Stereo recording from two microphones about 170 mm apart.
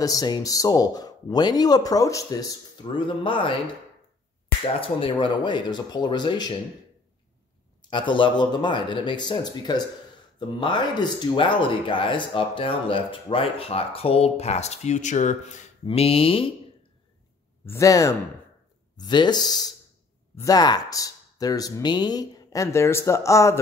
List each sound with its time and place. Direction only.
0.0 s speech: 20° left (ahead or behind)
4.7 s speech: 30° left (ahead or behind)
7.9 s speech: 30° left (ahead or behind); by 15.6 s 45° left (ahead or behind)
15.8 s speech: 35° left (ahead or behind)
17.6 s speech: 20° left (ahead or behind)